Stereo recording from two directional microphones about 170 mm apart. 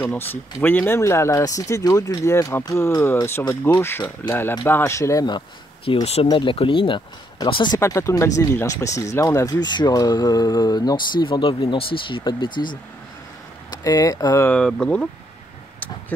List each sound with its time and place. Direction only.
0.0 s speech: 10° left (ahead or behind)
5.9 s speech: 35° left (ahead or behind)
13.7 s speech: 20° left (ahead or behind); by 15.0 s 5° left (ahead or behind)